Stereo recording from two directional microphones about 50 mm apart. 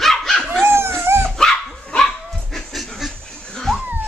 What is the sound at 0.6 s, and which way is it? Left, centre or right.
Dog, right.